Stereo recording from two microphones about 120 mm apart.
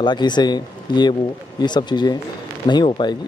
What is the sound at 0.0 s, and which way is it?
Speech, 40° left (ahead or behind).